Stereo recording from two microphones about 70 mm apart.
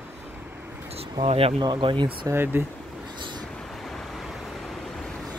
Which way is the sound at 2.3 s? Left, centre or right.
Right.